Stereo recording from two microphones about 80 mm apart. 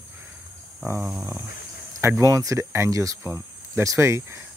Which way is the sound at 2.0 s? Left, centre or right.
Right.